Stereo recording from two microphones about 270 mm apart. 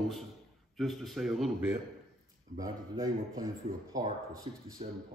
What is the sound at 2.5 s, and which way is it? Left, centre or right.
Speech, centre.